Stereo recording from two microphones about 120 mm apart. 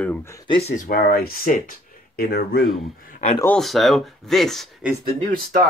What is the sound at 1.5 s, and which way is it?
Speech, 90° left.